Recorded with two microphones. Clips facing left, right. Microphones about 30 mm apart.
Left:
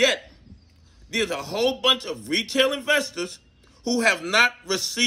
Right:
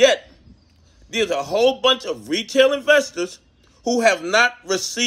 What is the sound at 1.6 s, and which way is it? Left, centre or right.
Speech, left.